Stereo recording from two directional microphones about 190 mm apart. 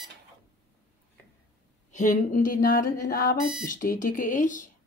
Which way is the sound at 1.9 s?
45° left (ahead or behind).